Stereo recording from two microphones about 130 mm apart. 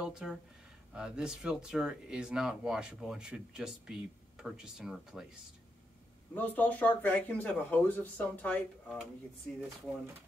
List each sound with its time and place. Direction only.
0.0 s speech: 5° right (ahead or behind)
6.3 s speech: 15° left (ahead or behind)